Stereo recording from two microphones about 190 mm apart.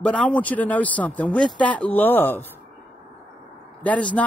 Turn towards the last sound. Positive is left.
turn(degrees=5)  # may be behind; listen again after turning